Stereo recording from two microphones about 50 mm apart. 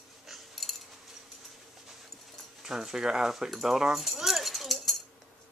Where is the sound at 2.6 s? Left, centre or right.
Centre.